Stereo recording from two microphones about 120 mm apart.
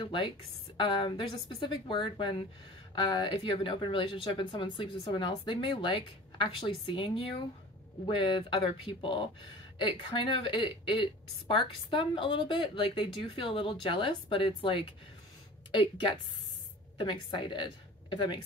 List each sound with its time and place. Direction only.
0.0 s a woman's voice: 45° left (ahead or behind)